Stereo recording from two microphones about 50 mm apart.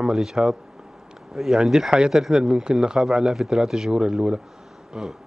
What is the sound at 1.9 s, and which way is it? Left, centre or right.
A woman's voice, centre.